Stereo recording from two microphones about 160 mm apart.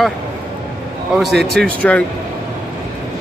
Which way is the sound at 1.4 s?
90° right.